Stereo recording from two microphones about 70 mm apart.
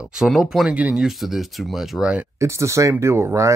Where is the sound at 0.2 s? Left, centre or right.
Centre.